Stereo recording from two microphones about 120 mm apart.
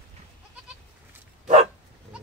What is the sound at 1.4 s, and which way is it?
Dog, 70° right (ahead or behind).